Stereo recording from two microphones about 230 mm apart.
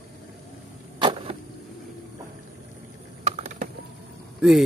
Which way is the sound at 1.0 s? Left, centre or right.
Right.